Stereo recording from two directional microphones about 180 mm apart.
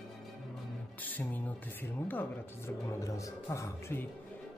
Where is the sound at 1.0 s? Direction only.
10° left (ahead or behind).